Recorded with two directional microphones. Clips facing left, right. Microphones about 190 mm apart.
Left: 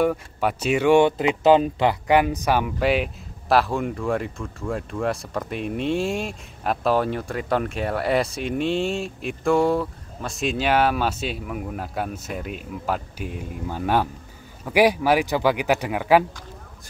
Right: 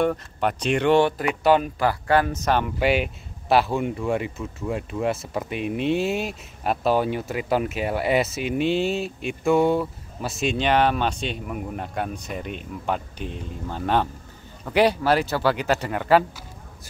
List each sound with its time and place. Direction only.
0.0 s speech: 5° left (ahead or behind)
1.0 s speech: 20° left (ahead or behind)
2.8 s speech: centre (ahead or behind)